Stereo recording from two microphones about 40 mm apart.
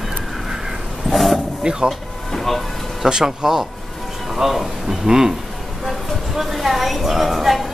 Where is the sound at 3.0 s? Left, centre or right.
Centre.